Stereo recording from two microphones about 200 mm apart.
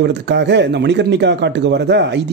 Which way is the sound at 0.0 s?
60° right (ahead or behind).